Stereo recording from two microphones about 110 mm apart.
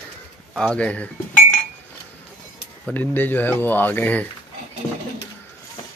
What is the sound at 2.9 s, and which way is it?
Speech, 15° left (ahead or behind).